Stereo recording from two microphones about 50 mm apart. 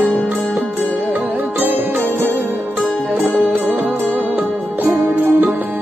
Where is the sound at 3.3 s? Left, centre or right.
Left.